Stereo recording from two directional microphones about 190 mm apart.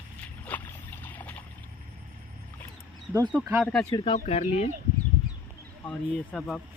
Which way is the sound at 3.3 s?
10° right (ahead or behind).